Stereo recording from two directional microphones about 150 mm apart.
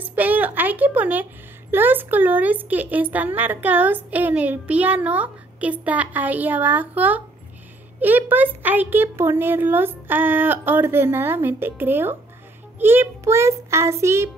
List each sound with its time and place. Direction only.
0.1 s a woman's voice: 10° right (ahead or behind)